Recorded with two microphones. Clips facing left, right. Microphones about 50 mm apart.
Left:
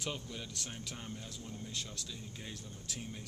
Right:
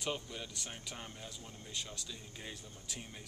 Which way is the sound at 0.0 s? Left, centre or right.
Centre.